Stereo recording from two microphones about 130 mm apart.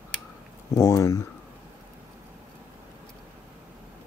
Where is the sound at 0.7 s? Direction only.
25° left (ahead or behind).